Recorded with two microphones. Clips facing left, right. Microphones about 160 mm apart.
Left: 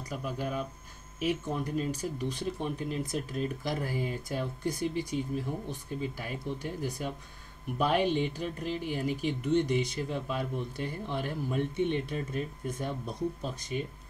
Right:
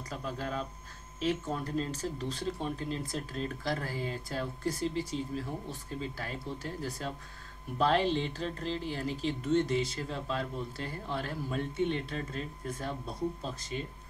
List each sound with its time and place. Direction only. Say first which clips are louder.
0.1 s speech: left 2 dB; 15° left (ahead or behind)